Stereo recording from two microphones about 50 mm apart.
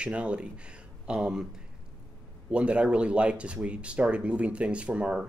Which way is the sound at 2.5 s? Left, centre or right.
Right.